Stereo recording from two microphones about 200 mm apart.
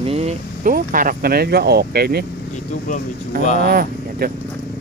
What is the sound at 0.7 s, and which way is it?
Speech, 45° right (ahead or behind).